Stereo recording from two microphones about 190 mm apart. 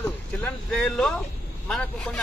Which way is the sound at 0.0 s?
5° left (ahead or behind).